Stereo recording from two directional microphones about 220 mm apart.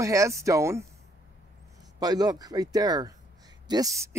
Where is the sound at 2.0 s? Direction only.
15° right (ahead or behind).